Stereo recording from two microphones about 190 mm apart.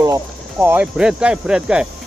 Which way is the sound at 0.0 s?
15° right (ahead or behind).